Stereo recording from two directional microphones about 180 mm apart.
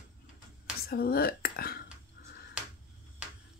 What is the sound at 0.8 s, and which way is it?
Speech, 60° left (ahead or behind).